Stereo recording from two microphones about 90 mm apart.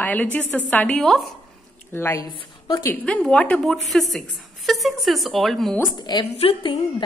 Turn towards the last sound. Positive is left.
turn(degrees=90)